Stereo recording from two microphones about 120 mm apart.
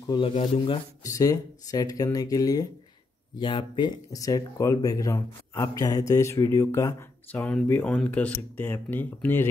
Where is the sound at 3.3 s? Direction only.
40° left (ahead or behind); by 7.0 s 25° left (ahead or behind).